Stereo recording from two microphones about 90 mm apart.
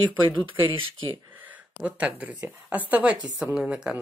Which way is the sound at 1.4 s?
15° right (ahead or behind).